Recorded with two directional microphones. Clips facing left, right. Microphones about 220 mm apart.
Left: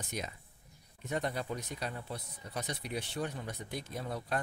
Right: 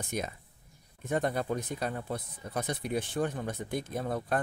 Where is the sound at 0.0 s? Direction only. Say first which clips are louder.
Right 5 dB; 50° right (ahead or behind).